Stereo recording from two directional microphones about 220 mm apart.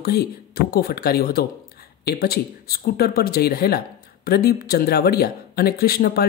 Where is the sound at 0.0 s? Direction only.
45° left (ahead or behind).